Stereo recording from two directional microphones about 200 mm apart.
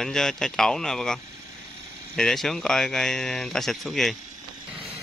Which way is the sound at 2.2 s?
5° left (ahead or behind).